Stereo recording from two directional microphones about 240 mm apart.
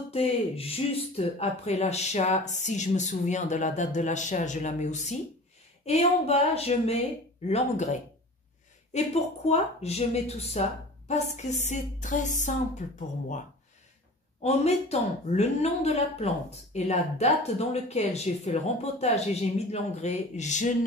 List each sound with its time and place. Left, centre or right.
0.1 s a woman's voice: left
14.4 s a woman's voice: left